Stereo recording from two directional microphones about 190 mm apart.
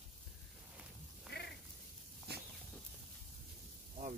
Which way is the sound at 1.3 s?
60° left (ahead or behind).